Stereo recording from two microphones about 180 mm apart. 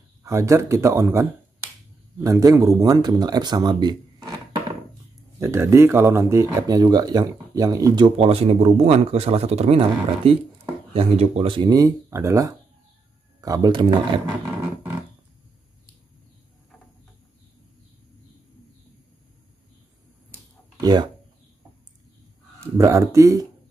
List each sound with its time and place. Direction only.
0.2 s speech: 15° right (ahead or behind)
20.8 s speech: 25° right (ahead or behind)
22.8 s speech: 15° right (ahead or behind)